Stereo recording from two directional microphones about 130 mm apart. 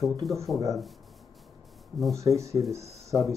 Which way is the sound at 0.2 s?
Centre (ahead or behind).